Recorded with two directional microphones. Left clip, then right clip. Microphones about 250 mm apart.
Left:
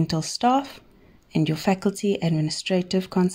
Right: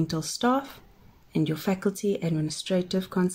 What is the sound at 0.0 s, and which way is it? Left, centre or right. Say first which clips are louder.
Speech: left 4 dB; left.